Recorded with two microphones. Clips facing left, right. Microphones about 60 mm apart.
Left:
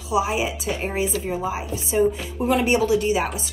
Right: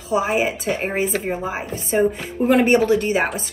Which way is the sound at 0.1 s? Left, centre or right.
Right.